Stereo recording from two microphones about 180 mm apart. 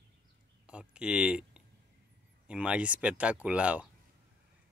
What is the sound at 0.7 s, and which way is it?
Speech, 5° right (ahead or behind).